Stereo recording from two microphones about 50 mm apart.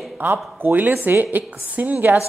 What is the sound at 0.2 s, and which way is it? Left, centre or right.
A woman's voice, right.